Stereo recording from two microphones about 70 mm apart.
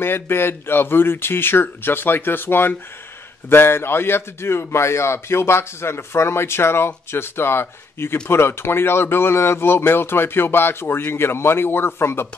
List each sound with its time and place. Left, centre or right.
0.0 s speech: left